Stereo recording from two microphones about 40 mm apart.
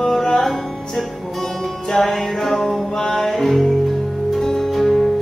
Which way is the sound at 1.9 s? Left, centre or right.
Centre.